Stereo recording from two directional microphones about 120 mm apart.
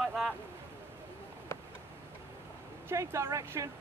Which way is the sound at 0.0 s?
Centre (ahead or behind).